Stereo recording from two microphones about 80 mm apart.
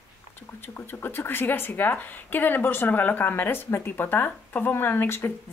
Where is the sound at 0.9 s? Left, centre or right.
Left.